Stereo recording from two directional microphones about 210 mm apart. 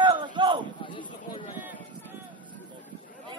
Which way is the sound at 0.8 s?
25° left (ahead or behind).